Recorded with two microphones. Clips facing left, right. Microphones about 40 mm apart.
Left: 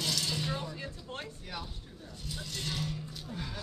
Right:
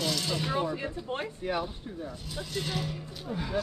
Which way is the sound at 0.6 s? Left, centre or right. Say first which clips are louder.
Right 10 dB; right.